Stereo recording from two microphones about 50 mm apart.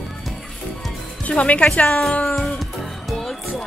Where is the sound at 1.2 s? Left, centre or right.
Left.